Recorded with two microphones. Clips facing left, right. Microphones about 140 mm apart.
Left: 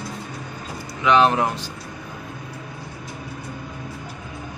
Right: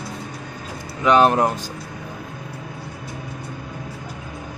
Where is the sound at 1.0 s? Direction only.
45° right (ahead or behind).